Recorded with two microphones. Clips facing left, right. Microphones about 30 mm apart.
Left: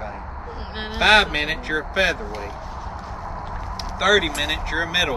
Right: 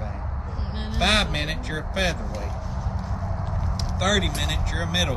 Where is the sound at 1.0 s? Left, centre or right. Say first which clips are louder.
Left 6 dB; centre.